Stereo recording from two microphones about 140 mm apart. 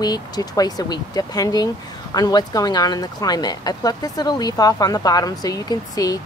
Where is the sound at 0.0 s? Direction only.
30° left (ahead or behind).